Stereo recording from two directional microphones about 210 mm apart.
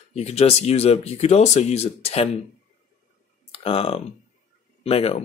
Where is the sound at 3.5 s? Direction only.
30° left (ahead or behind).